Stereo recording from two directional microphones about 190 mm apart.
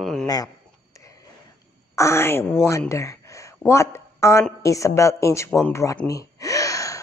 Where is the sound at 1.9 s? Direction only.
15° left (ahead or behind).